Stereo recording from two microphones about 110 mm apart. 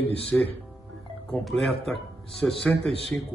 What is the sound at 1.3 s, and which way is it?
Speech, centre (ahead or behind).